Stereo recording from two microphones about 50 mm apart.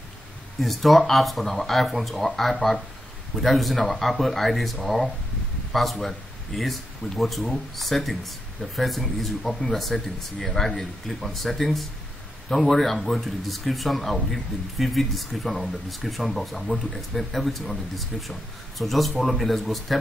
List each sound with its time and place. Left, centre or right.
0.6 s speech: centre